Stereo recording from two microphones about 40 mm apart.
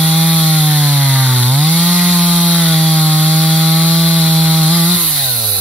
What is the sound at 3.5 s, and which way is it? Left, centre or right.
Wood, centre.